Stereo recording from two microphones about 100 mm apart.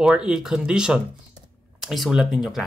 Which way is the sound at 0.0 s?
10° right (ahead or behind).